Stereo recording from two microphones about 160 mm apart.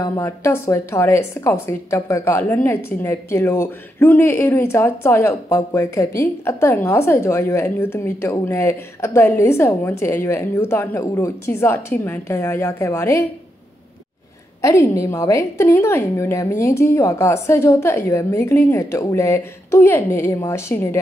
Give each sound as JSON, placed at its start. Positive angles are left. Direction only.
{"t": 0.0, "sound": "a woman's voice", "side_deg": 15}
{"t": 14.6, "sound": "a woman's voice", "side_deg": 20}